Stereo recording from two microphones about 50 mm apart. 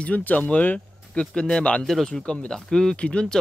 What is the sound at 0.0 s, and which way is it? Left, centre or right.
Speech, left.